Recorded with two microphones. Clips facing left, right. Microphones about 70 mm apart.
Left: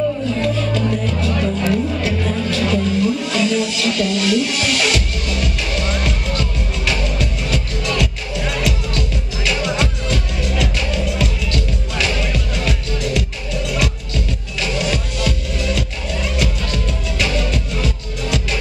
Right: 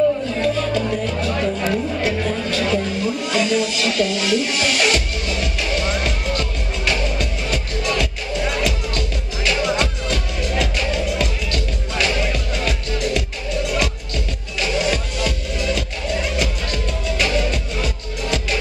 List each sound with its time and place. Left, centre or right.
0.4 s music: centre
14.6 s music: centre